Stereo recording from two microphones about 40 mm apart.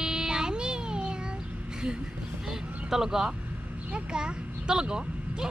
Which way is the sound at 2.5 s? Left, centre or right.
Centre.